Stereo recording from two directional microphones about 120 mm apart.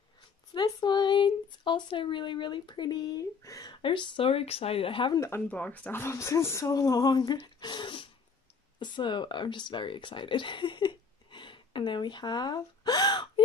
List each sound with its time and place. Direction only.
0.6 s speech: 35° left (ahead or behind)
3.7 s speech: 45° left (ahead or behind)
5.1 s speech: 25° left (ahead or behind)
5.5 s speech: 10° left (ahead or behind); by 13.3 s 35° left (ahead or behind)